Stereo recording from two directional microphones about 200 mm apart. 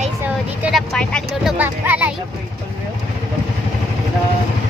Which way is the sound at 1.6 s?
10° right (ahead or behind).